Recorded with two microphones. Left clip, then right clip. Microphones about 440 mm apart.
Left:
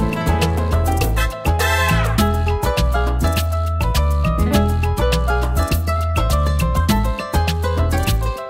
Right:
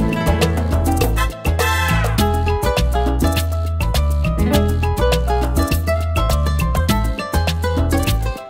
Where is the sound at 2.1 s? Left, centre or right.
Right.